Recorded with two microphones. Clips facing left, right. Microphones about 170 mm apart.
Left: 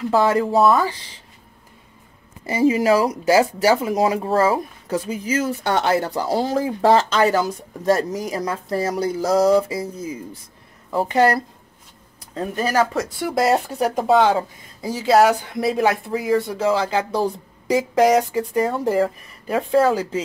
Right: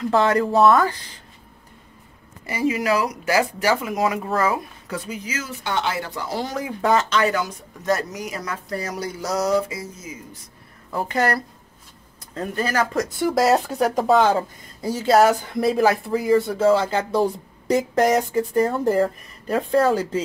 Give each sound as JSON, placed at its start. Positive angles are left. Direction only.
{"t": 0.1, "sound": "speech", "side_deg": 10}
{"t": 2.4, "sound": "speech", "side_deg": 30}
{"t": 5.6, "sound": "speech", "side_deg": 40}
{"t": 11.1, "sound": "speech", "side_deg": 20}
{"t": 12.5, "sound": "speech", "side_deg": 15}
{"t": 13.2, "sound": "speech", "side_deg": 0}